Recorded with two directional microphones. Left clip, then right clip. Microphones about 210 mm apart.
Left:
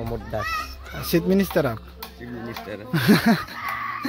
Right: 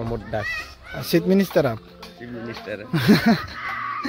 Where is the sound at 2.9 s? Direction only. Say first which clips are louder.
Even; centre (ahead or behind).